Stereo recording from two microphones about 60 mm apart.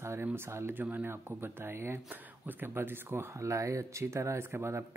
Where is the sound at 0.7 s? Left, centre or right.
Right.